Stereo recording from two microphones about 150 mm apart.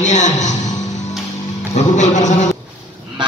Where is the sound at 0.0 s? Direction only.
55° left (ahead or behind).